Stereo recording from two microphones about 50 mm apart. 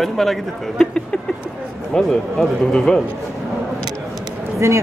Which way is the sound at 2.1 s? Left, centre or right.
Centre.